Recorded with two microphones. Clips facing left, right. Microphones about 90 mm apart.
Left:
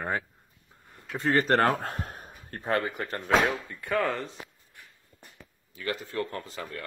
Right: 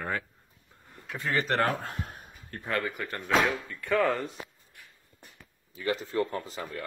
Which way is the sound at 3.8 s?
Centre (ahead or behind).